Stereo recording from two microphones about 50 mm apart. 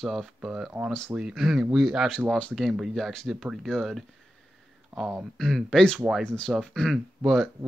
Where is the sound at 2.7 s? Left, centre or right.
Centre.